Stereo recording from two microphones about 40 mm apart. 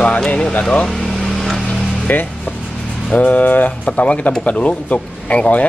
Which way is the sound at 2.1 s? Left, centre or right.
Left.